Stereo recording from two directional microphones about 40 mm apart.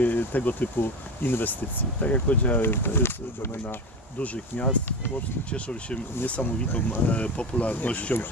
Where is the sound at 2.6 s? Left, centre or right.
Left.